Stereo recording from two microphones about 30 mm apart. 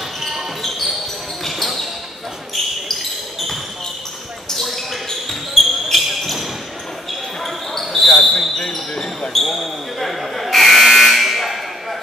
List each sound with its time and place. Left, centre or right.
0.2 s basketball bounce: centre
5.6 s basketball bounce: centre
7.9 s basketball bounce: centre
9.3 s buzzer: centre